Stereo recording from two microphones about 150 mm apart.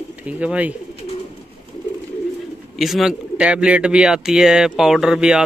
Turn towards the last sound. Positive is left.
turn(degrees=-5)  # may be behind; listen again after turning